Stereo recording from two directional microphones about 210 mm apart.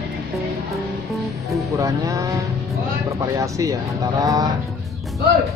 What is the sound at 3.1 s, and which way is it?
Speech, 15° right (ahead or behind).